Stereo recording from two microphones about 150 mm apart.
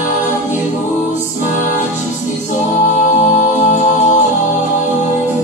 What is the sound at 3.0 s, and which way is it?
Music, 50° left (ahead or behind).